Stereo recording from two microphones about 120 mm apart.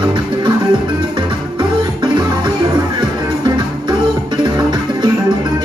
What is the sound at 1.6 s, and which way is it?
Music, 40° right (ahead or behind).